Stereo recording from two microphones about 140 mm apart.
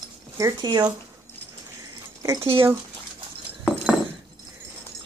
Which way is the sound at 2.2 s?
25° right (ahead or behind).